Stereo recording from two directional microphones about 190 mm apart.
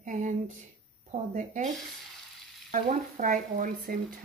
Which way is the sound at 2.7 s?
45° right (ahead or behind).